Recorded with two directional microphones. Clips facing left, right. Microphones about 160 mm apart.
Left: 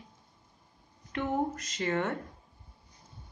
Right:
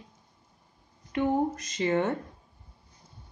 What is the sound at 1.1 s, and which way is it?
Speech, 15° right (ahead or behind).